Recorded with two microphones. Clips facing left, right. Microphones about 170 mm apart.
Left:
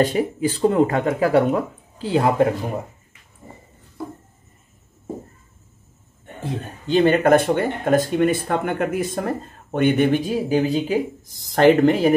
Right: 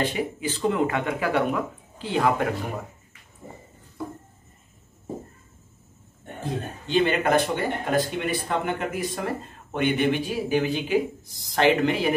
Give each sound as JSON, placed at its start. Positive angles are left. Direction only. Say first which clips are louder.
{"t": 0.0, "sound": "speech", "louder": "left 7 dB", "side_deg": 40}
{"t": 6.9, "sound": "speech", "louder": "left 6 dB", "side_deg": 40}
{"t": 11.2, "sound": "speech", "louder": "left 10 dB", "side_deg": 45}